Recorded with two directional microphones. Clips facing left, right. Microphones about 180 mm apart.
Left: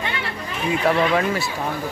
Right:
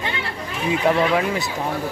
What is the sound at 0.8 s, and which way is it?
Speech, 20° right (ahead or behind).